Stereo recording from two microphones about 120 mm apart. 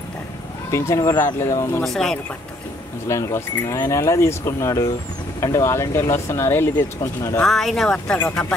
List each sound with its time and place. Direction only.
0.7 s speech: 25° left (ahead or behind)
1.0 s speech: 35° left (ahead or behind)
1.4 s speech: 25° left (ahead or behind)
1.8 s speech: centre (ahead or behind)
3.1 s speech: 25° left (ahead or behind)
7.4 s speech: centre (ahead or behind)